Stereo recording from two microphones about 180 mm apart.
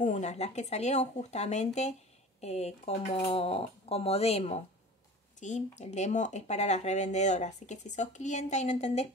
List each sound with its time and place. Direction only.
0.0 s speech: 40° left (ahead or behind)